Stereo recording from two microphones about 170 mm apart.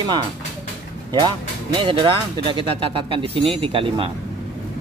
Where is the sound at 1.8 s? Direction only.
30° right (ahead or behind).